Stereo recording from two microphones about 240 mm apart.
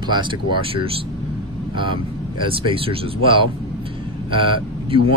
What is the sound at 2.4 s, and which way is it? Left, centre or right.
Speech, right.